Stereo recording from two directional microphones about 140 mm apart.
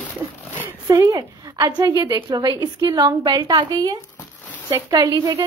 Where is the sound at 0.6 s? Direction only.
25° right (ahead or behind).